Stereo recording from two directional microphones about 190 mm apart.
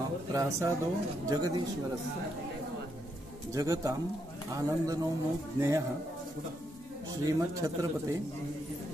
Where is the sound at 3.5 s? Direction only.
15° right (ahead or behind).